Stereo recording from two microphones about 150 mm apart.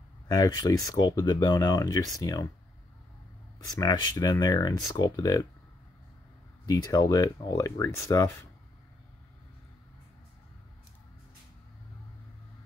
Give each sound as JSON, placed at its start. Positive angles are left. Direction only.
{"t": 0.3, "sound": "speech", "side_deg": 25}
{"t": 3.5, "sound": "speech", "side_deg": 25}
{"t": 6.6, "sound": "speech", "side_deg": 25}